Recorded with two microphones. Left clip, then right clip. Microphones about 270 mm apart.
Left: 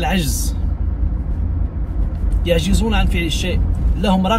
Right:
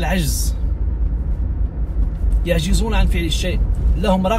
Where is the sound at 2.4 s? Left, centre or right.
Centre.